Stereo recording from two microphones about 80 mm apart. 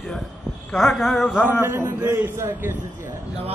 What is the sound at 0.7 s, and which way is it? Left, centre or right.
Speech, centre.